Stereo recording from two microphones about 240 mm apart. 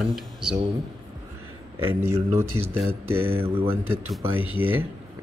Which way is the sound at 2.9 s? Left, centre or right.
Right.